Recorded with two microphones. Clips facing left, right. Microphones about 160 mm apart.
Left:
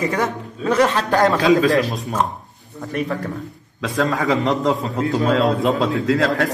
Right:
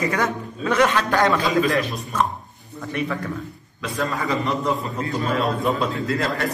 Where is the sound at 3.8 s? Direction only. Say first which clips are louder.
Left 5 dB; 90° left.